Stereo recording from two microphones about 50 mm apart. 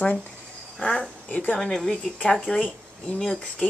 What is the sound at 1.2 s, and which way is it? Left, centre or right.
Speech, left.